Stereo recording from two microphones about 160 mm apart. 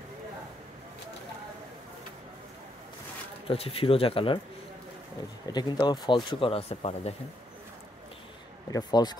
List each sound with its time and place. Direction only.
3.4 s speech: 35° left (ahead or behind)
5.5 s speech: 30° left (ahead or behind)
8.6 s speech: 25° left (ahead or behind)